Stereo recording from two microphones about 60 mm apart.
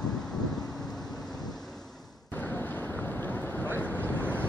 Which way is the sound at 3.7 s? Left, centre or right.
Left.